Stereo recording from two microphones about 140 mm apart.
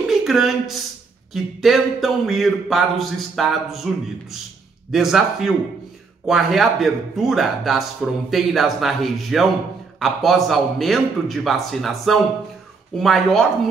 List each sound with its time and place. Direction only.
0.1 s speech: centre (ahead or behind)
4.9 s speech: centre (ahead or behind)